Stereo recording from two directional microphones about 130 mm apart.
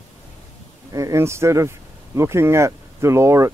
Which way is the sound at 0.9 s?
25° right (ahead or behind).